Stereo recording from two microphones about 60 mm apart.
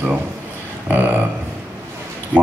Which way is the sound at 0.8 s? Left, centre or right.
Right.